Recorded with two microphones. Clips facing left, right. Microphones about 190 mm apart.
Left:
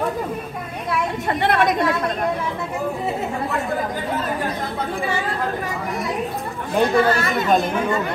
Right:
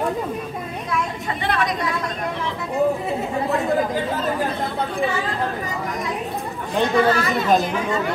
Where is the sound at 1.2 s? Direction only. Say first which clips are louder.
Left 8 dB; 60° left (ahead or behind).